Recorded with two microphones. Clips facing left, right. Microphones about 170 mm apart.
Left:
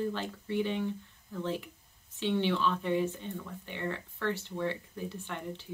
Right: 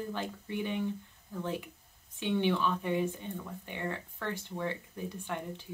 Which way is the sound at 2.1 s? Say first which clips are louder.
Even; 15° right (ahead or behind).